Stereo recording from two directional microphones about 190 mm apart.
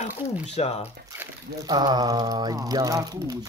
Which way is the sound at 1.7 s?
20° right (ahead or behind).